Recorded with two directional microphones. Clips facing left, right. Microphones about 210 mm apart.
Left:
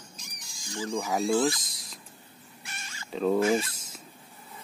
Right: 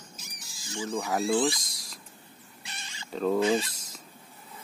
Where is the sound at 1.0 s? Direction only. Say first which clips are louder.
Left 1 dB; centre (ahead or behind).